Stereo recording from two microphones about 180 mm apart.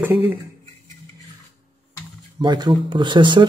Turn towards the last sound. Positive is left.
turn(degrees=-25)  # may be behind; listen again after turning